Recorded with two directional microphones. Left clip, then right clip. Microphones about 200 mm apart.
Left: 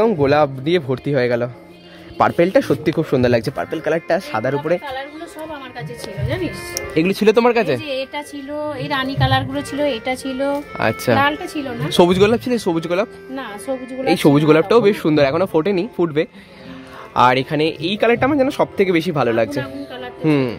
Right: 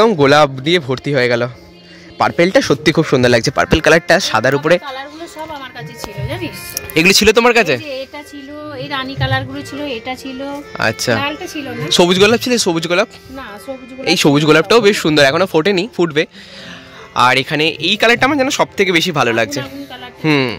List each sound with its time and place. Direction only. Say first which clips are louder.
0.0 s speech: right 5 dB; 10° right (ahead or behind)
6.7 s speech: right 9 dB; 5° right (ahead or behind)
8.7 s a woman's voice: right 3 dB; 20° left (ahead or behind)
9.8 s a woman's voice: left 2 dB; 10° left (ahead or behind)
10.8 s speech: right 1 dB; 5° right (ahead or behind)